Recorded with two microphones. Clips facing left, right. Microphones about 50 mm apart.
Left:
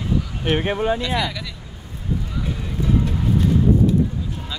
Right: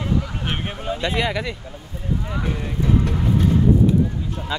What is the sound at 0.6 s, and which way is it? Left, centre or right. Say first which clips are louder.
Speech: left 7 dB; left.